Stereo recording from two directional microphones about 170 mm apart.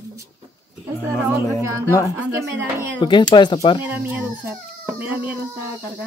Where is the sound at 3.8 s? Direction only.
10° right (ahead or behind).